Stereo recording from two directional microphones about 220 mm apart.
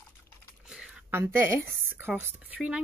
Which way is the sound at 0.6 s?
5° right (ahead or behind).